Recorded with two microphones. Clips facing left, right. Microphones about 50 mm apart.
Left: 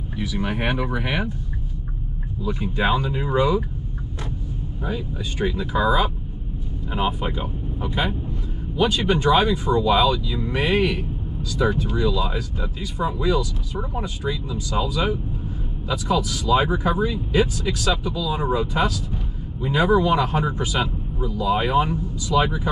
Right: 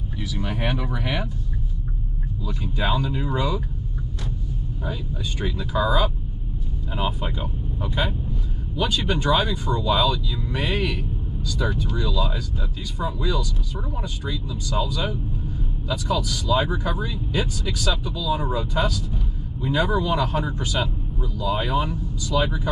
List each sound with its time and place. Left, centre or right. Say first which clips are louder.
0.2 s speech: left 3 dB; centre
2.4 s speech: left 4 dB; centre
4.8 s a man's voice: left 3 dB; centre
16.4 s speech: left 3 dB; centre